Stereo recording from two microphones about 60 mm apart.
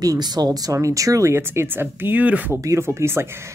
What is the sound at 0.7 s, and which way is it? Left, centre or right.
Speech, right.